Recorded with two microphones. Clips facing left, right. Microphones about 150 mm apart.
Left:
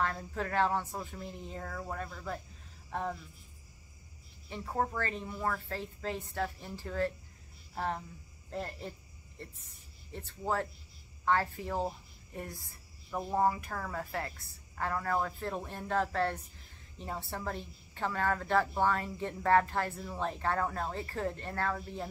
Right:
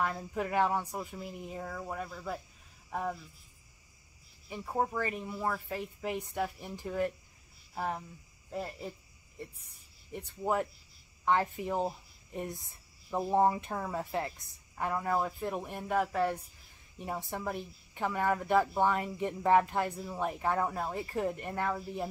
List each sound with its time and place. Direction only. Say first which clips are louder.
0.0 s speech: right 1 dB; 10° right (ahead or behind)
2.9 s a sound: right 1 dB; 5° right (ahead or behind)
4.5 s a woman's voice: right 1 dB; 10° right (ahead or behind)